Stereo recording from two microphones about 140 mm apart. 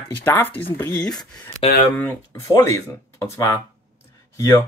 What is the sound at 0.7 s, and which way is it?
Speech, 30° left (ahead or behind).